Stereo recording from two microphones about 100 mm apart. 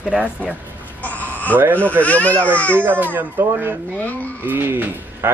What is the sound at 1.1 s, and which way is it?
Chicken, 15° left (ahead or behind).